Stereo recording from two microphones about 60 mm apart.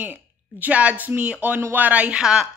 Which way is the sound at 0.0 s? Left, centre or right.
Right.